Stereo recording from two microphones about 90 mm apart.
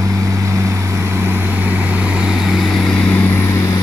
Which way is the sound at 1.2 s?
25° right (ahead or behind).